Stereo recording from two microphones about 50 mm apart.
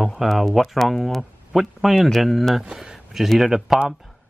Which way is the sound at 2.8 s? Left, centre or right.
Centre.